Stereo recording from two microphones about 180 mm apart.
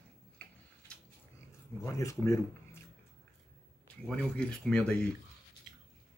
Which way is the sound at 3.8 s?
5° left (ahead or behind).